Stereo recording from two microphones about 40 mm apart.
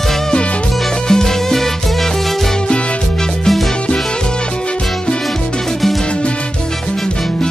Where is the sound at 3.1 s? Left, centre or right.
Centre.